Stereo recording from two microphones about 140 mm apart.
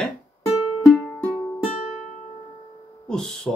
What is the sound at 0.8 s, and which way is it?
Music, 20° left (ahead or behind).